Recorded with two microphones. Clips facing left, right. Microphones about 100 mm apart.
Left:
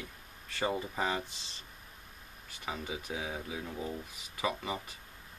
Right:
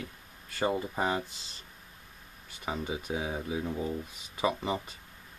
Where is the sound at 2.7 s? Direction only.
15° right (ahead or behind).